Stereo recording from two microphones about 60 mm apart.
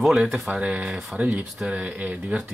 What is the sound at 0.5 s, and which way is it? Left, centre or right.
Speech, right.